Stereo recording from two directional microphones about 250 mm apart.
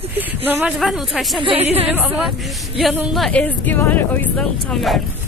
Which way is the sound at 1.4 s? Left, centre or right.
Right.